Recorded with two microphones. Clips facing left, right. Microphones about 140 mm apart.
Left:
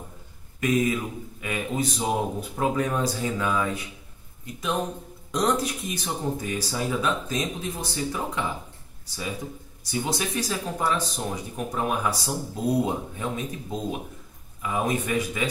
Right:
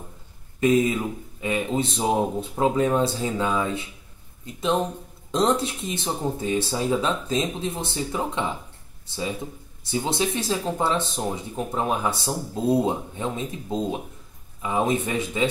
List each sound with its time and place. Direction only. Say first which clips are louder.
0.6 s speech: right 4 dB; 25° right (ahead or behind)